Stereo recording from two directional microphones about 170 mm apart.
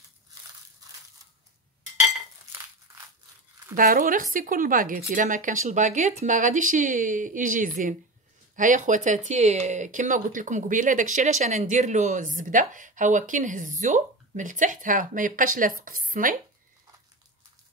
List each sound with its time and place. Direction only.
3.7 s speech: 55° right (ahead or behind)